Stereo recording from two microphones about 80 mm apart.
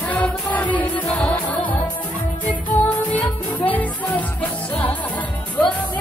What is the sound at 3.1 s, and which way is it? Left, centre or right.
Music, centre.